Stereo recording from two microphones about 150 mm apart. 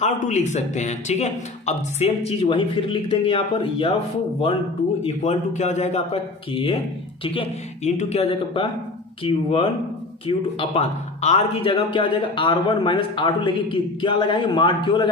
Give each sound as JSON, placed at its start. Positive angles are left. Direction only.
{"t": 0.0, "sound": "a man's voice", "side_deg": 50}
{"t": 5.0, "sound": "a man's voice", "side_deg": 50}